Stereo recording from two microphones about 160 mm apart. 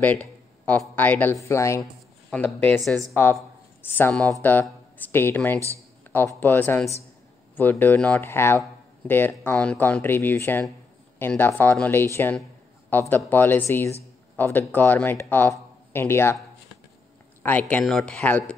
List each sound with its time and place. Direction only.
0.0 s speech: 10° left (ahead or behind)
2.8 s speech: centre (ahead or behind)
3.8 s speech: 10° left (ahead or behind)
17.4 s speech: 10° left (ahead or behind)